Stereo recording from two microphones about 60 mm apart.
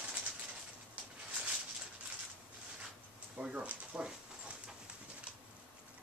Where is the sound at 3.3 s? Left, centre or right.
Right.